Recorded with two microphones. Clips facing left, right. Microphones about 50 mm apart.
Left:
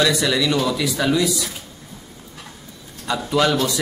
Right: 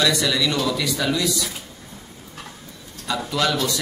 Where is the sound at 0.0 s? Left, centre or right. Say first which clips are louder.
Left 2 dB; centre.